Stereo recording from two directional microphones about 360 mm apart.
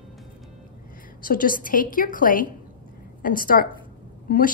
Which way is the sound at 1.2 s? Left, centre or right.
Left.